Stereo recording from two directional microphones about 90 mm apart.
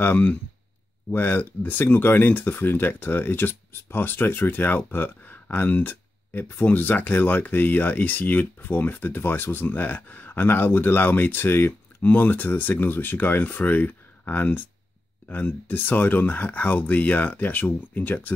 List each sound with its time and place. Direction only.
0.0 s speech: 20° left (ahead or behind)